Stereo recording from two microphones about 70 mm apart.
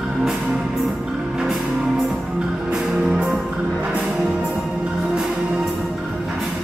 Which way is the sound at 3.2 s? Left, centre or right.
Centre.